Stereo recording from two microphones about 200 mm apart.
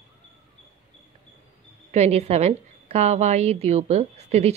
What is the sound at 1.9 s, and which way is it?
A woman's voice, 35° right (ahead or behind).